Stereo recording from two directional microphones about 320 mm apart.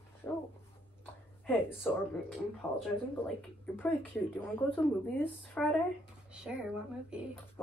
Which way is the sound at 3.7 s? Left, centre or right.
Centre.